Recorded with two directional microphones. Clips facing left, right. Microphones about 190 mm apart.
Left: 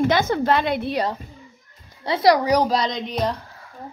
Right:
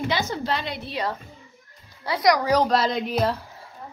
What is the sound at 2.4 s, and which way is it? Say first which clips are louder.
Speech: left 2 dB; 15° left (ahead or behind).